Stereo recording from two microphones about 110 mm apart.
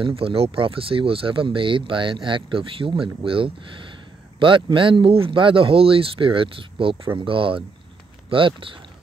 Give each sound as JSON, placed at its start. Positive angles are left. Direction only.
{"t": 0.0, "sound": "speech", "side_deg": -60}